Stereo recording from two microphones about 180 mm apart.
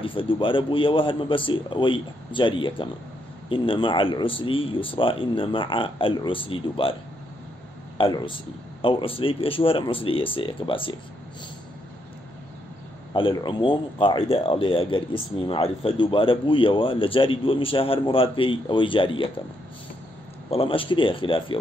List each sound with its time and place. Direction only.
0.0 s speech: 30° left (ahead or behind)
8.0 s speech: 30° left (ahead or behind)
13.1 s speech: 25° left (ahead or behind)
20.4 s speech: 30° left (ahead or behind)